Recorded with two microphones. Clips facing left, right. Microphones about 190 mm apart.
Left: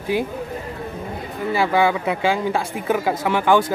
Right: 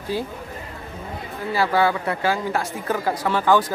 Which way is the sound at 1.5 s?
20° left (ahead or behind).